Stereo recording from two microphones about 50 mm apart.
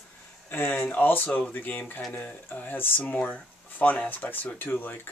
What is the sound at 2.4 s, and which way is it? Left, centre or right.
Speech, left.